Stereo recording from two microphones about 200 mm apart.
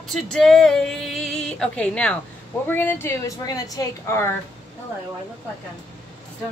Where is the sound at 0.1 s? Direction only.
Centre (ahead or behind).